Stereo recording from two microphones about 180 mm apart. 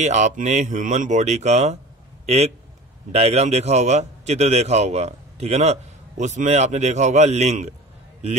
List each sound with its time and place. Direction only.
0.0 s a man's voice: 40° right (ahead or behind)